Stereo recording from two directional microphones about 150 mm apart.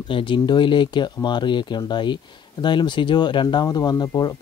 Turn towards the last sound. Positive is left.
turn(degrees=25)  # may be behind; listen again after turning